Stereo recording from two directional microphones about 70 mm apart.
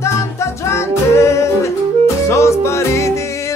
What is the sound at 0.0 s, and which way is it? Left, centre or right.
Music, left.